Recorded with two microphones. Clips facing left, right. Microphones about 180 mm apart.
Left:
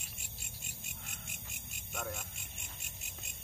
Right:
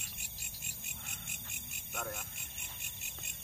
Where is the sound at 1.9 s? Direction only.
Centre (ahead or behind).